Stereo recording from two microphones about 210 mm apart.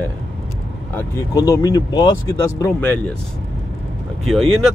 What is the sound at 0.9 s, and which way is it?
Speech, 15° left (ahead or behind).